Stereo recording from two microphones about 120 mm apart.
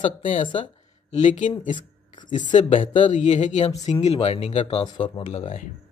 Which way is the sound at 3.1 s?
75° left (ahead or behind).